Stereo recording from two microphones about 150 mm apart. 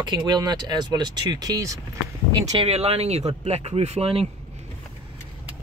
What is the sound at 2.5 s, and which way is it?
Speech, 35° right (ahead or behind).